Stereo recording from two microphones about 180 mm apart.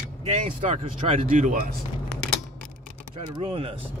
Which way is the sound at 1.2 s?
50° right (ahead or behind).